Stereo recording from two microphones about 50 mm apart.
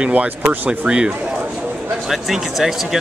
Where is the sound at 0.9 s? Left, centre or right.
Centre.